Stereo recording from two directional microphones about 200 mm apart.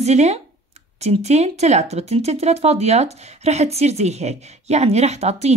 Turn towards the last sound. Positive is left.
turn(degrees=-35)  # may be behind; listen again after turning